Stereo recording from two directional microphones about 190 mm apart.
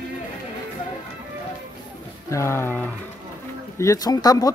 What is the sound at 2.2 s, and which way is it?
Speech, 15° left (ahead or behind).